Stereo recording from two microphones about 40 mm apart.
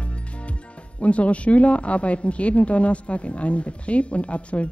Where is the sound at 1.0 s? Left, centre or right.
Left.